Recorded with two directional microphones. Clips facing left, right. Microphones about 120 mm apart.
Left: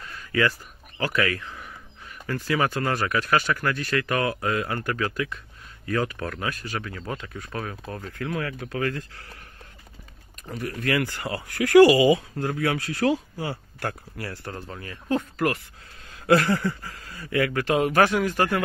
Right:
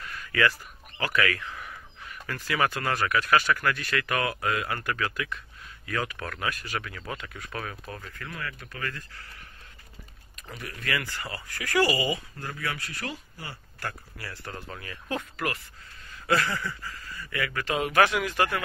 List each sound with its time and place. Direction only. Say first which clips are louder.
0.0 s a sound: left 2 dB; 25° left (ahead or behind)
2.2 s speech: left 3 dB; 25° left (ahead or behind)
8.1 s speech: left 12 dB; 70° left (ahead or behind)
10.6 s speech: left 7 dB; 50° left (ahead or behind)
11.1 s speech: left 9 dB; 65° left (ahead or behind)
14.2 s speech: left 6 dB; 45° left (ahead or behind)
14.5 s speech: left 3 dB; 30° left (ahead or behind)
16.3 s speech: left 7 dB; 55° left (ahead or behind)
17.5 s speech: left 3 dB; 50° left (ahead or behind)